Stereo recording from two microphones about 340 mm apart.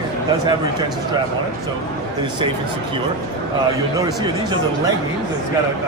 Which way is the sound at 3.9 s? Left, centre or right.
Centre.